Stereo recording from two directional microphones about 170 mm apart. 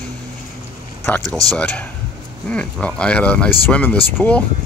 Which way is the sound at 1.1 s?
10° left (ahead or behind).